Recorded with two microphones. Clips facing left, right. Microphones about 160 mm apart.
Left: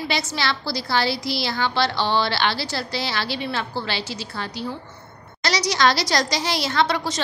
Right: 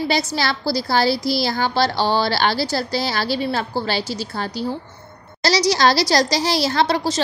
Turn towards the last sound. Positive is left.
turn(degrees=-35)  # may be behind; listen again after turning